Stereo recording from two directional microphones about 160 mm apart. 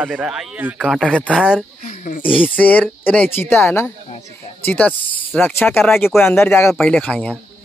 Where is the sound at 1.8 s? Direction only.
50° left (ahead or behind).